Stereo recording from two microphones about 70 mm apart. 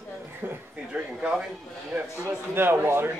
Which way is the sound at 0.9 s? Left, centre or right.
Centre.